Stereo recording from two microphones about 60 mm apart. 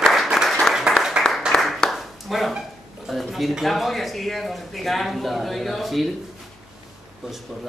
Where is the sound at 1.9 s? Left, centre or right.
Centre.